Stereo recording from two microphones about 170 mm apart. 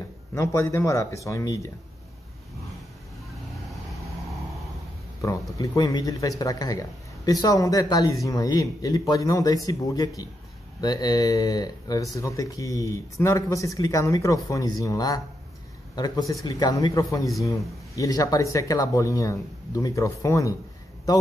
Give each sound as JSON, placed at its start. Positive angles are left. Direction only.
{"t": 0.3, "sound": "speech", "side_deg": 15}
{"t": 3.5, "sound": "vehicle", "side_deg": 0}
{"t": 5.6, "sound": "speech", "side_deg": 20}